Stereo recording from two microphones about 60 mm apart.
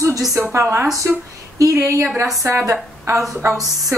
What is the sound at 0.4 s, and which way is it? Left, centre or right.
Speech, right.